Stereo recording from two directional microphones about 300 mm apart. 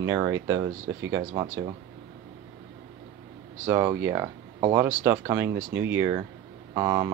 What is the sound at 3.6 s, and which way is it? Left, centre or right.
Speech, centre.